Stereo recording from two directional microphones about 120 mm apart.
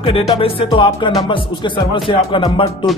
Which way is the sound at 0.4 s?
45° left (ahead or behind).